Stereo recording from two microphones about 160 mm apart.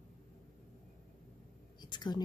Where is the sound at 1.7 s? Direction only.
30° left (ahead or behind).